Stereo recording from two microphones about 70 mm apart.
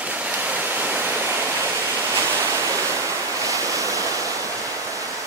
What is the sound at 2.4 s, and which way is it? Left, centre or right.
Waves, right.